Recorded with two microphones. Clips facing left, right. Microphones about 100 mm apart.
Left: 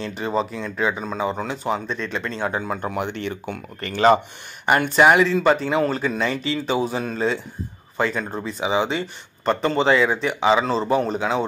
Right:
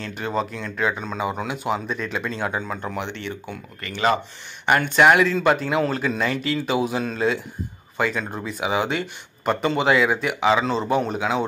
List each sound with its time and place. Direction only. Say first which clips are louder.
0.0 s speech: left 2 dB; centre (ahead or behind)
2.6 s speech: left 3 dB; 10° left (ahead or behind)
3.3 s speech: left 3 dB; 55° left (ahead or behind)
3.8 s speech: left 5 dB; 40° left (ahead or behind)
4.6 s speech: left 1 dB; 5° left (ahead or behind)